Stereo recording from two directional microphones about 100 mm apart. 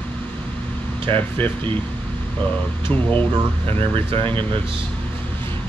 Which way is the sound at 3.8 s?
65° right (ahead or behind).